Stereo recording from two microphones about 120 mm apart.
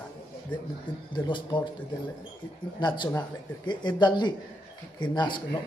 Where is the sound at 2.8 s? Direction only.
40° left (ahead or behind).